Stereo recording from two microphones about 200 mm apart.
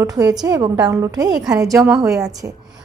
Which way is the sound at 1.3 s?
Centre (ahead or behind).